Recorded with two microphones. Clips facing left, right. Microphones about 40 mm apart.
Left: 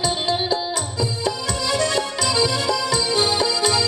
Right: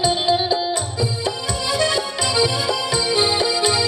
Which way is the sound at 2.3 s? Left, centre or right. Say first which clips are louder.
Right 1 dB; centre.